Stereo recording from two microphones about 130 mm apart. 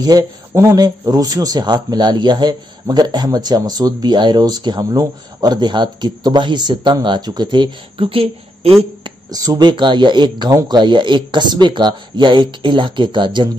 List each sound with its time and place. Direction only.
0.0 s speech: 25° right (ahead or behind); by 8.7 s 45° right (ahead or behind)
9.0 s speech: 30° right (ahead or behind)